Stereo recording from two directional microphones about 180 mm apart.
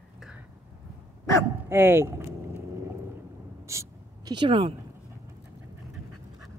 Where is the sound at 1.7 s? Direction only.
15° right (ahead or behind).